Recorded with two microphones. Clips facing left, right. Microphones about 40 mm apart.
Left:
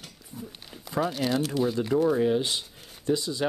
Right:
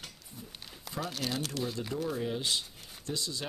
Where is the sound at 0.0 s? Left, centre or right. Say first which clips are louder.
Left 6 dB; centre.